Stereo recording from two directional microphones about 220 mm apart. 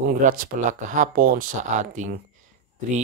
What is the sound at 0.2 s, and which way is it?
Speech, 35° right (ahead or behind).